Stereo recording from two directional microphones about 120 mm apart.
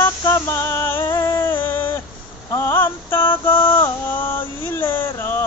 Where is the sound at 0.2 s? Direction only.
25° left (ahead or behind).